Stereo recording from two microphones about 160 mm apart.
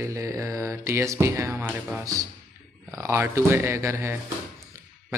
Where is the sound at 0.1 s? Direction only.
20° right (ahead or behind).